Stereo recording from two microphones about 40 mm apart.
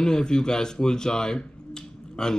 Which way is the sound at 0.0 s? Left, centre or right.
Centre.